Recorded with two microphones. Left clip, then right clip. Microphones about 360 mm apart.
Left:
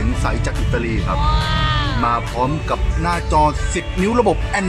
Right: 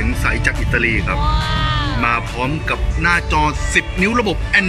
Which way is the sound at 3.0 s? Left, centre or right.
Centre.